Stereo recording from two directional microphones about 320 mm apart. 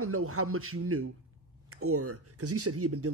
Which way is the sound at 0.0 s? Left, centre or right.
Right.